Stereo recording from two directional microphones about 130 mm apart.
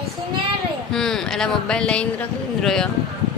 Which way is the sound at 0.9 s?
5° left (ahead or behind).